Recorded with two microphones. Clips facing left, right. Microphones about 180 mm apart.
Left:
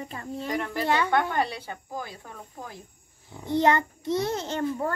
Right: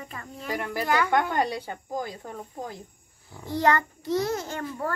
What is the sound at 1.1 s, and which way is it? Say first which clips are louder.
Speech: right 1 dB; 15° right (ahead or behind).